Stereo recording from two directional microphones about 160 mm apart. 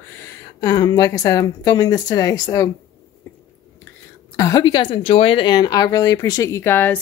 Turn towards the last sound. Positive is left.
turn(degrees=10)  # may be behind; listen again after turning